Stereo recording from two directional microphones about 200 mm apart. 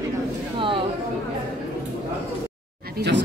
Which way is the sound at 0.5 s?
25° right (ahead or behind).